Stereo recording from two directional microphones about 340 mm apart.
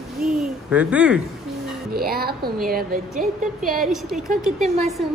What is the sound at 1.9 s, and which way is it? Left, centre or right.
A woman's voice, right.